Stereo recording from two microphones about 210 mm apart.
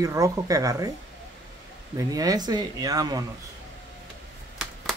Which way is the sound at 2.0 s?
15° right (ahead or behind).